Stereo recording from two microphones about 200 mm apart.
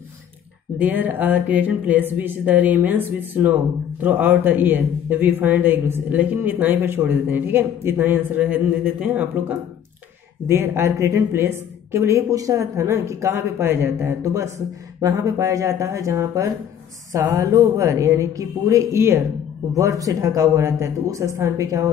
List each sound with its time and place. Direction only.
0.7 s a man's voice: 10° right (ahead or behind)